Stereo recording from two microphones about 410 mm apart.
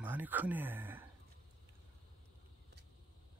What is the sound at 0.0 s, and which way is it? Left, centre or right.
Speech, centre.